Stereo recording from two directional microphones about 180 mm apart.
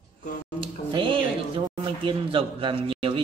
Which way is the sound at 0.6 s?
30° right (ahead or behind).